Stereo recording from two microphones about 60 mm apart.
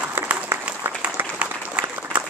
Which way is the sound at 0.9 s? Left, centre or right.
Right.